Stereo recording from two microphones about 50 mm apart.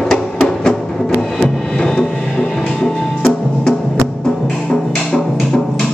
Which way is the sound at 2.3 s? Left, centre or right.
Left.